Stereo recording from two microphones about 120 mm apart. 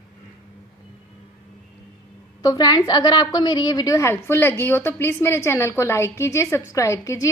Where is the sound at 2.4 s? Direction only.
35° left (ahead or behind).